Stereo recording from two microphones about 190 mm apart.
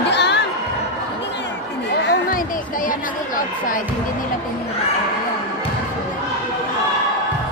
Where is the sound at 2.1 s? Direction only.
45° left (ahead or behind).